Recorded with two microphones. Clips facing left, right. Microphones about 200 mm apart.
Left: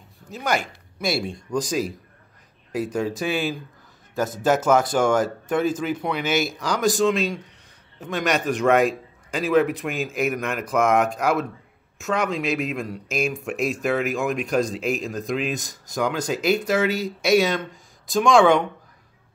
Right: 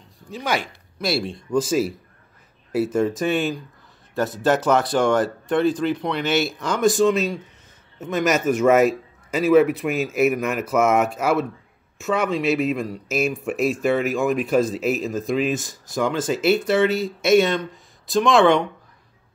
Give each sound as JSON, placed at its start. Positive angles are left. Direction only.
{"t": 0.3, "sound": "speech", "side_deg": 0}